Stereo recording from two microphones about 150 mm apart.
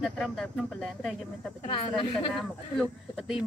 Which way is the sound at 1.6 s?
35° left (ahead or behind).